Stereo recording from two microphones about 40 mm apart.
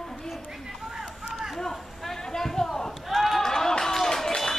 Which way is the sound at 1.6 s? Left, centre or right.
Centre.